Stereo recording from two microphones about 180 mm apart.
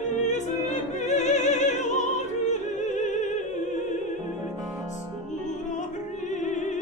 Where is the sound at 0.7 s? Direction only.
40° left (ahead or behind).